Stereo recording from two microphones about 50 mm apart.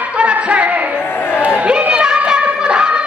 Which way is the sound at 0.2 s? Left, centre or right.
Right.